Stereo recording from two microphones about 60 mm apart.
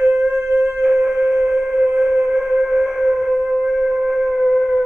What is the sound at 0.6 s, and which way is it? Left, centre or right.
Music, right.